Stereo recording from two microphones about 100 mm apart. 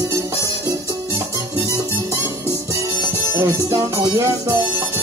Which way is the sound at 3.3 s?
30° right (ahead or behind).